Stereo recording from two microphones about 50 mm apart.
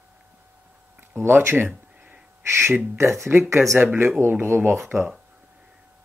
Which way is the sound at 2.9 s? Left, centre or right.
Right.